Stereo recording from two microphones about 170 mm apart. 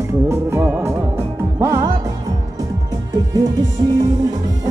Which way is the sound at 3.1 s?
20° right (ahead or behind).